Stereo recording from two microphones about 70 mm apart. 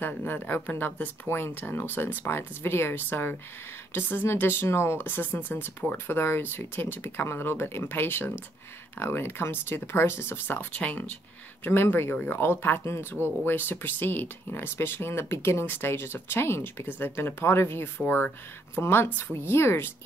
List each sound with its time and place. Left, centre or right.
0.0 s speech: left
11.6 s speech: left